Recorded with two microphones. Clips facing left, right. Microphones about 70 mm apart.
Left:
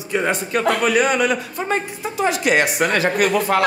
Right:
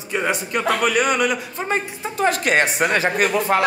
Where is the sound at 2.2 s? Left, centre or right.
Right.